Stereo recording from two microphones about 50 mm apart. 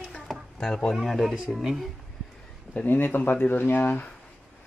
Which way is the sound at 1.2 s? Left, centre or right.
Centre.